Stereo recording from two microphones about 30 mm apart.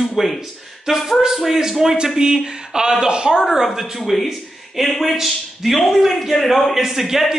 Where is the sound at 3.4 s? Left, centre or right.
Centre.